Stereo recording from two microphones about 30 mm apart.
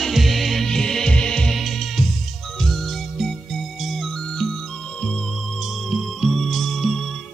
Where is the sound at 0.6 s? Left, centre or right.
Centre.